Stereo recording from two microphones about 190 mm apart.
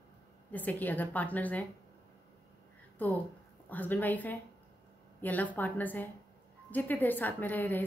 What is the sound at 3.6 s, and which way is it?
A woman's voice, 10° left (ahead or behind).